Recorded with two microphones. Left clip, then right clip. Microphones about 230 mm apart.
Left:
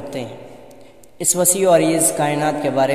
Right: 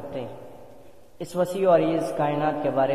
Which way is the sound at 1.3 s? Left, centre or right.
Left.